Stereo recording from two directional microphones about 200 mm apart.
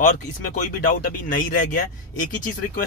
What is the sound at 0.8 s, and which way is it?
Speech, 45° left (ahead or behind).